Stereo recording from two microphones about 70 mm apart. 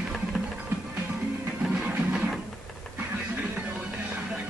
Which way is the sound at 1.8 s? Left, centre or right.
Centre.